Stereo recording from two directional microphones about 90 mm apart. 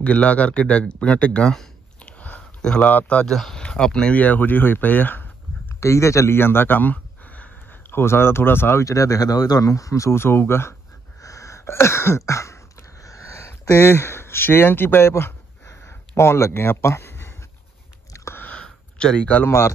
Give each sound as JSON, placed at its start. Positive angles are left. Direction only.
{"t": 0.0, "sound": "speech", "side_deg": 15}
{"t": 3.3, "sound": "speech", "side_deg": 5}
{"t": 5.8, "sound": "speech", "side_deg": 35}
{"t": 12.3, "sound": "throat clearing", "side_deg": 35}
{"t": 13.0, "sound": "a sound", "side_deg": 35}
{"t": 18.4, "sound": "sniff", "side_deg": 15}
{"t": 19.4, "sound": "speech", "side_deg": 25}